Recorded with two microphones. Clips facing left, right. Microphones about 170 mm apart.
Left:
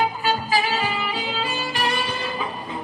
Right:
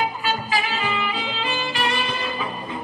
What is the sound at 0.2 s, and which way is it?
Music, 40° left (ahead or behind).